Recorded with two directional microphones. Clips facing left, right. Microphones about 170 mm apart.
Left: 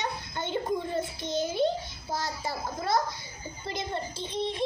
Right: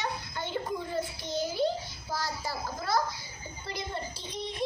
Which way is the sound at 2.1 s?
25° left (ahead or behind).